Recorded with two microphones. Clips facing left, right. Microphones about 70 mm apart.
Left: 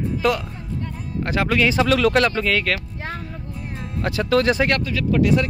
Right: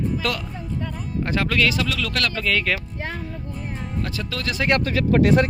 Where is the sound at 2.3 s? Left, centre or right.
Centre.